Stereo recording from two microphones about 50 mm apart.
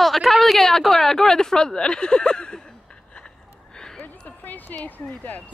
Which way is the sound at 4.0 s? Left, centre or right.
Left.